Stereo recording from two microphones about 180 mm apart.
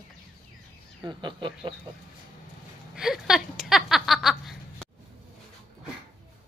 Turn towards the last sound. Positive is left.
turn(degrees=0)  # may be behind; listen again after turning